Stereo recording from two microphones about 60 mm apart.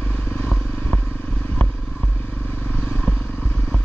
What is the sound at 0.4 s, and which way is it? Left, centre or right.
Vehicle, left.